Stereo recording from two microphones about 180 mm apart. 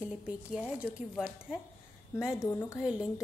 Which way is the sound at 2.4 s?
15° left (ahead or behind).